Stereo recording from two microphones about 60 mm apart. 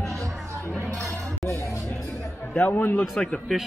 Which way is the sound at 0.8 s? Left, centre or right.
Centre.